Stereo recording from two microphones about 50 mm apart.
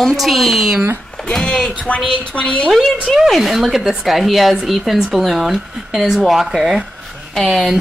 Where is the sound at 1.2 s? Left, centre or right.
Centre.